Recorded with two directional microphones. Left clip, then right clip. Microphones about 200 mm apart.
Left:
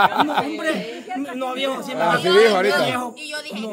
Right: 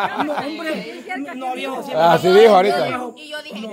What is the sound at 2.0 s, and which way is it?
Speech, 30° right (ahead or behind).